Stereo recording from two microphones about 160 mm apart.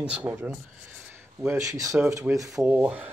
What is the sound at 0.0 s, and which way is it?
Speech, 10° right (ahead or behind).